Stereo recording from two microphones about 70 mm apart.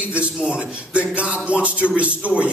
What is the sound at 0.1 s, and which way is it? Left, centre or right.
A man's voice, centre.